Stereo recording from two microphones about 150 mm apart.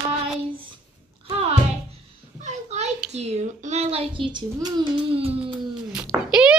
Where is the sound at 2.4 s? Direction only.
50° right (ahead or behind).